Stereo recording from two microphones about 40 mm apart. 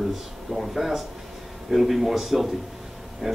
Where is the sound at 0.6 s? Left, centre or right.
Centre.